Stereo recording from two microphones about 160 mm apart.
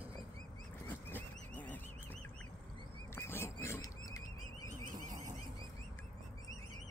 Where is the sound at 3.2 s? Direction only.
15° left (ahead or behind).